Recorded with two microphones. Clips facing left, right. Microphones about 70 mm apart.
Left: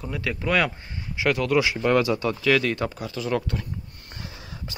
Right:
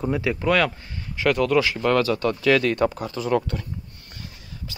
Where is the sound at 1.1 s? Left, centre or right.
Centre.